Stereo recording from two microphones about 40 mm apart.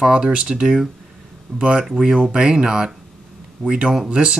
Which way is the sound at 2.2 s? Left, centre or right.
Right.